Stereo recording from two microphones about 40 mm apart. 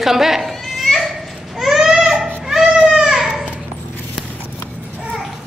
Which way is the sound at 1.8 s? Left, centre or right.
Centre.